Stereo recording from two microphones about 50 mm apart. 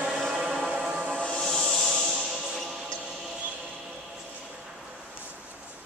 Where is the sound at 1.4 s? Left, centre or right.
Centre.